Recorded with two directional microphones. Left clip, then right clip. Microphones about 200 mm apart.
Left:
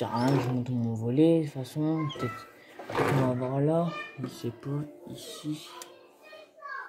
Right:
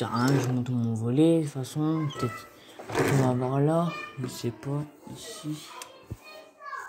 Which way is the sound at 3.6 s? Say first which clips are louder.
Left 1 dB; 25° right (ahead or behind).